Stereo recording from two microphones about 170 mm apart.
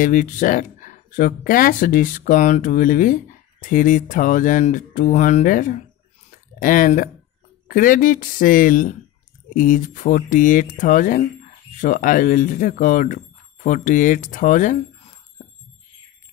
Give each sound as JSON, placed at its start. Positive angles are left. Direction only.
{"t": 0.0, "sound": "speech", "side_deg": 50}